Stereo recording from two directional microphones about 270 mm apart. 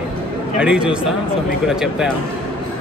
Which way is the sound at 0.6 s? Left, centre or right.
Centre.